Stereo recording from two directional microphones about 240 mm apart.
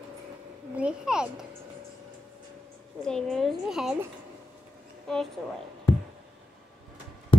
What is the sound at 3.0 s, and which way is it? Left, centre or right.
A child's voice, centre.